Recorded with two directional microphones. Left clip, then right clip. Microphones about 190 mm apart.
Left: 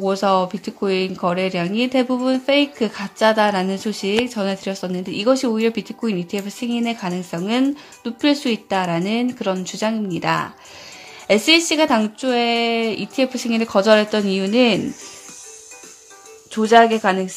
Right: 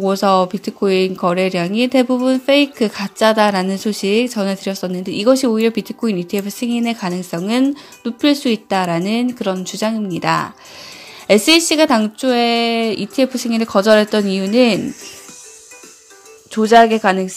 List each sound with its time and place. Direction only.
0.0 s speech: 15° right (ahead or behind)
16.5 s speech: 15° right (ahead or behind)